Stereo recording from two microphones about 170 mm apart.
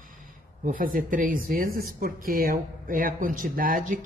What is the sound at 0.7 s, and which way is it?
Speech, 55° right (ahead or behind).